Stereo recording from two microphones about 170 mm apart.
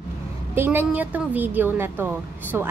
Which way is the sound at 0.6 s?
10° right (ahead or behind).